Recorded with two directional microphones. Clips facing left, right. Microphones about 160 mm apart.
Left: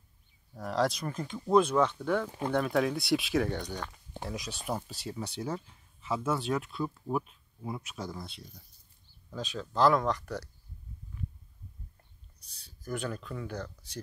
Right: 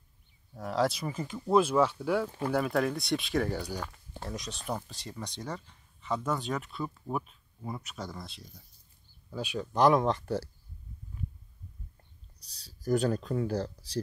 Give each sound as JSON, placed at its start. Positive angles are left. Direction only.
{"t": 0.6, "sound": "speech", "side_deg": 0}
{"t": 9.3, "sound": "speech", "side_deg": -10}
{"t": 12.4, "sound": "speech", "side_deg": -35}